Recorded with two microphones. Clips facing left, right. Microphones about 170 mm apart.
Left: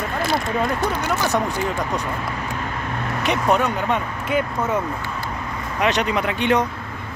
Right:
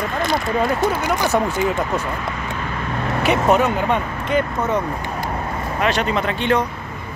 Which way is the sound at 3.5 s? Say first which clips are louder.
Right 3 dB; 5° right (ahead or behind).